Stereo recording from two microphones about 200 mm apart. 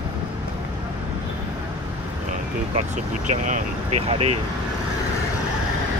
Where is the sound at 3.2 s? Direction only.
40° right (ahead or behind).